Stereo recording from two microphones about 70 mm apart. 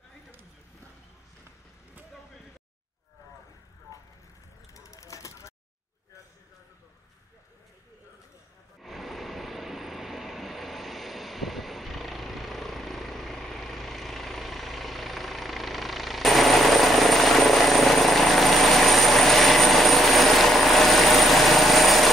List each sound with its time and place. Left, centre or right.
4.7 s vehicle: left
8.8 s vehicle: centre